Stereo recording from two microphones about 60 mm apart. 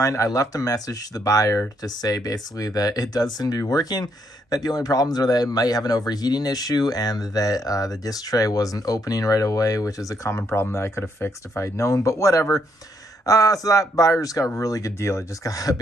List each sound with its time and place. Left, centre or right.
0.0 s speech: left
1.8 s speech: left
10.3 s speech: left
13.2 s speech: left